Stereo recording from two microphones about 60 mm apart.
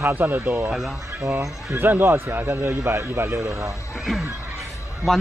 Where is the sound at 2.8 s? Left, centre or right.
Right.